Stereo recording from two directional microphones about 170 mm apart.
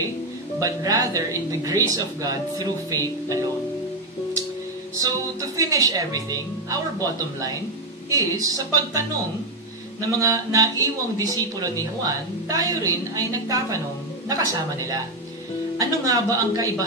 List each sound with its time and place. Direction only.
0.6 s speech: 20° right (ahead or behind)
4.9 s speech: 20° right (ahead or behind)